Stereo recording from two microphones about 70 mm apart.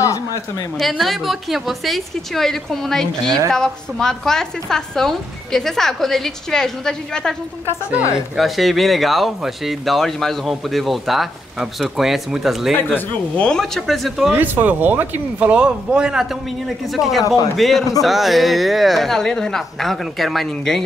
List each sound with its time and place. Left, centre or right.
0.7 s a woman's voice: centre
8.4 s a woman's voice: centre
13.4 s a woman's voice: centre
14.3 s a woman's voice: right; by 20.8 s centre